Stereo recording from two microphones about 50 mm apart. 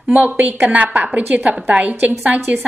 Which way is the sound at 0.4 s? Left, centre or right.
Right.